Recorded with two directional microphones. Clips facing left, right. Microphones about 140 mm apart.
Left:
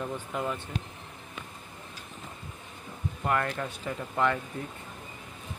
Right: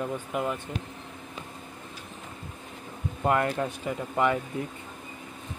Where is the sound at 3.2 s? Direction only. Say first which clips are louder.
Right 4 dB; 25° right (ahead or behind).